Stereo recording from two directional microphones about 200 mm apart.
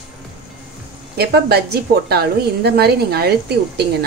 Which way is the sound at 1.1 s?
55° right (ahead or behind).